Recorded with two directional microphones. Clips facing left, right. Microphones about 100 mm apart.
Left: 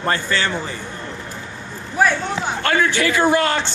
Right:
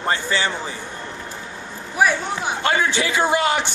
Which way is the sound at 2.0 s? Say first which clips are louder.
Left 1 dB; 10° right (ahead or behind).